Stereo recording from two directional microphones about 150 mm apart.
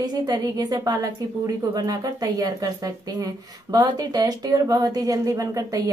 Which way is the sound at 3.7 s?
25° right (ahead or behind).